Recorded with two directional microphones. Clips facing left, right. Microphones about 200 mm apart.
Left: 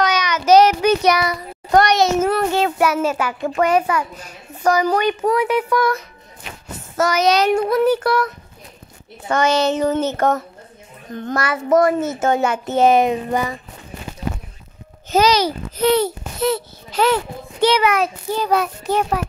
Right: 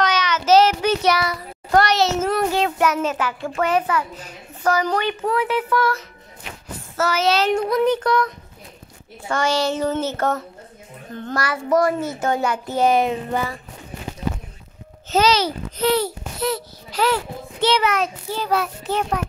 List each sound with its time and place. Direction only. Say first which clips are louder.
0.0 s child singing: left 2 dB; 10° left (ahead or behind)
2.3 s a child's voice: left 2 dB; centre (ahead or behind)
9.3 s a child's voice: left 4 dB; 20° left (ahead or behind)
15.0 s a child's voice: left 2 dB; 10° left (ahead or behind)